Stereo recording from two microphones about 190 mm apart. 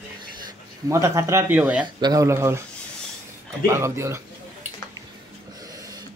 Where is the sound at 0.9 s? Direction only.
15° right (ahead or behind).